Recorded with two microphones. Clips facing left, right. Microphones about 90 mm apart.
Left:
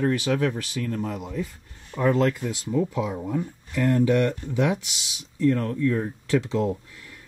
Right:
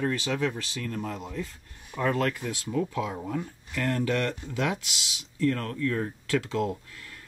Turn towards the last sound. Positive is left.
turn(degrees=20)  # may be behind; listen again after turning